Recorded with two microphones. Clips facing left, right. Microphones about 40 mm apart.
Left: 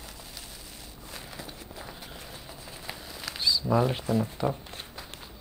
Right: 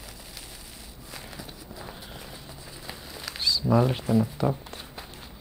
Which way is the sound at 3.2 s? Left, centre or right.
Centre.